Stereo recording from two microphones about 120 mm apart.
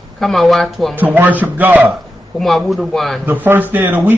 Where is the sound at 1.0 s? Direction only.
15° right (ahead or behind).